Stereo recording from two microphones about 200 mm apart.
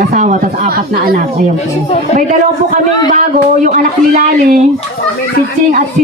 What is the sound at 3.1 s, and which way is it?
A woman's voice, 40° right (ahead or behind).